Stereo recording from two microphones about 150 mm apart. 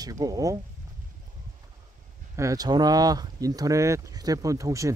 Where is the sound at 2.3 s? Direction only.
20° right (ahead or behind).